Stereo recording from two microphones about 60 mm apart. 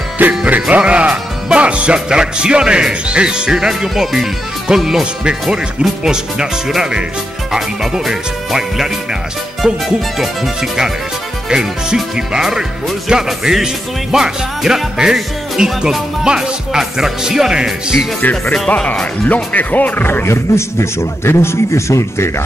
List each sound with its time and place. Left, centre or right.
0.5 s speech: right
10.1 s speech: centre
18.5 s speech: centre; by 20.2 s left
20.2 s a man's voice: left